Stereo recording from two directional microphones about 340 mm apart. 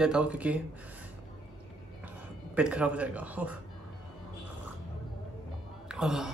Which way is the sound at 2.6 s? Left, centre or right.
Centre.